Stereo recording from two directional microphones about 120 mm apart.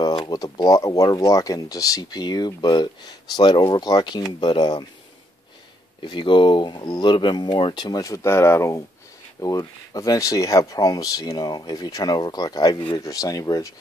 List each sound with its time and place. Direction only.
0.0 s speech: 35° left (ahead or behind)
6.0 s speech: 40° left (ahead or behind)